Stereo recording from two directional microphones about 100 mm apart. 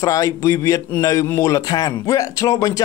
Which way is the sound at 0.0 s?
35° left (ahead or behind).